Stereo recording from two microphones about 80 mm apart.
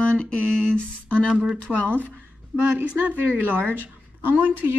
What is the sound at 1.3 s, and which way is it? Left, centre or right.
A woman's voice, centre.